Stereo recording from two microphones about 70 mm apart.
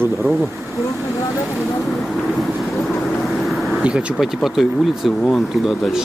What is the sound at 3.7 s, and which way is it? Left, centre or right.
Speech, centre.